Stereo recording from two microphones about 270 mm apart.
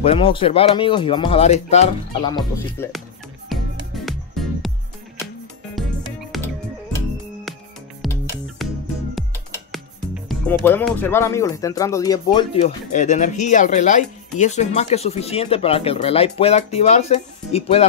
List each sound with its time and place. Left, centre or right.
0.0 s speech: left
3.4 s music: centre
6.3 s music: centre
8.0 s music: centre
9.7 s music: centre
10.6 s speech: centre; by 17.8 s left